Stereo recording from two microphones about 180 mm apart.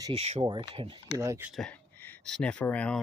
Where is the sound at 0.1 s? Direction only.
35° right (ahead or behind).